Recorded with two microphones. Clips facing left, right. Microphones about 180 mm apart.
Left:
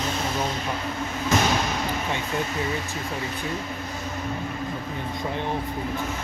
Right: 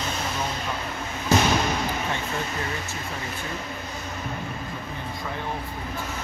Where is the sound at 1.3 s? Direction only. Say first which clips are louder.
Right 2 dB; 35° right (ahead or behind).